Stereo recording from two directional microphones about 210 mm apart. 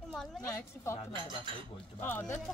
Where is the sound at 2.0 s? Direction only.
10° left (ahead or behind).